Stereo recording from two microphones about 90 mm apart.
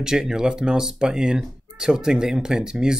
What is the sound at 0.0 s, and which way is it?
Speech, 5° right (ahead or behind).